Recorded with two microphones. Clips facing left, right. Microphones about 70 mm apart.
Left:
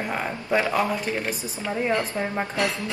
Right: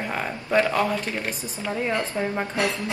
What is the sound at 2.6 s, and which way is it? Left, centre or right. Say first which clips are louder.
Speech: right 1 dB; right.